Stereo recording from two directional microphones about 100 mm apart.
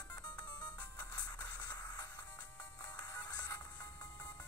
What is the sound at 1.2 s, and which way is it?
Music, 40° left (ahead or behind).